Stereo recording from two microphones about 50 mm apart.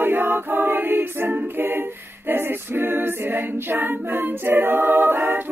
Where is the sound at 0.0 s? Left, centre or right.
Right.